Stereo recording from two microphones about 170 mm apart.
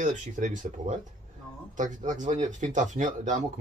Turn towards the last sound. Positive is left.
turn(degrees=-45)  # may be behind; listen again after turning